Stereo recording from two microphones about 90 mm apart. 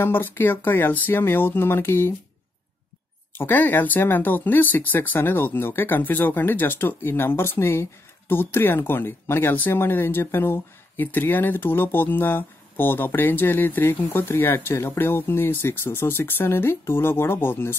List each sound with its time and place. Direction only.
0.0 s speech: 25° left (ahead or behind)
3.3 s speech: 20° left (ahead or behind)